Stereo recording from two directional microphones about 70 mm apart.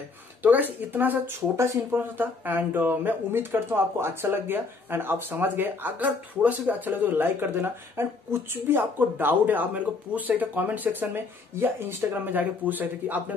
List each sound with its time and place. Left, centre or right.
0.4 s speech: right